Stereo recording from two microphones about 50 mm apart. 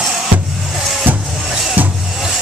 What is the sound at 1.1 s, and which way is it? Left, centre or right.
Vehicle, right.